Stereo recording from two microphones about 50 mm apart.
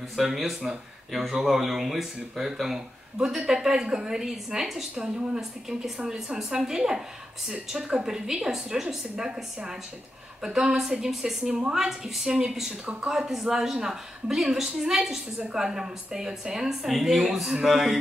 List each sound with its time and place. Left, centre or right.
0.1 s speech: centre
4.9 s a woman's voice: right
5.7 s speech: centre
8.8 s a woman's voice: centre
11.0 s speech: centre